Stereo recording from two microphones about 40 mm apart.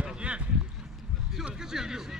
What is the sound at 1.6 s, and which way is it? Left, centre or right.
Speech, centre.